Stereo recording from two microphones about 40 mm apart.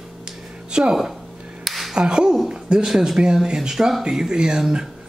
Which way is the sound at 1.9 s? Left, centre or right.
Right.